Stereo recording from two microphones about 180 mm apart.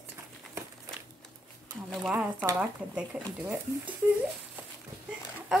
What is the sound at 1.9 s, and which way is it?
A woman's voice, centre (ahead or behind).